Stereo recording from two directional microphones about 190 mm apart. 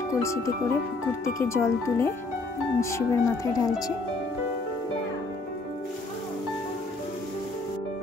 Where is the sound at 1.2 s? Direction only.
15° left (ahead or behind).